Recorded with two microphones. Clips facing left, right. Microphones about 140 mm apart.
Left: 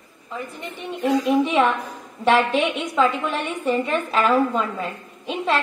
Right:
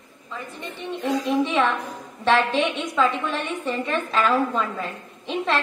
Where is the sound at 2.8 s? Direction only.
25° left (ahead or behind).